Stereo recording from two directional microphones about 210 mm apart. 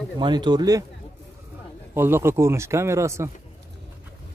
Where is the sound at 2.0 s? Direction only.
10° right (ahead or behind).